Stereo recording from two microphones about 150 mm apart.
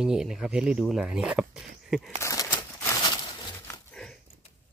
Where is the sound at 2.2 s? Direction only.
25° left (ahead or behind).